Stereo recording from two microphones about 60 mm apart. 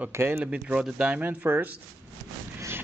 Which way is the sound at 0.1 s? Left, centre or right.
Right.